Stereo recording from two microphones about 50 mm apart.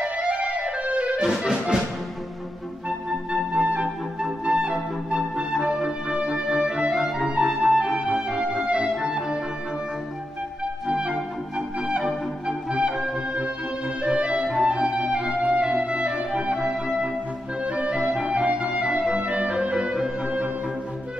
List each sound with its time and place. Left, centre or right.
0.0 s music: right
3.3 s music: right
7.2 s clarinet: right
7.6 s music: centre
10.6 s clarinet: right
11.5 s music: centre
13.8 s clarinet: centre
17.9 s clarinet: centre